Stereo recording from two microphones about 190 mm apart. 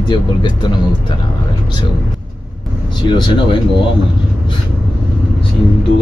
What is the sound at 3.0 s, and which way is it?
Speech, 25° left (ahead or behind).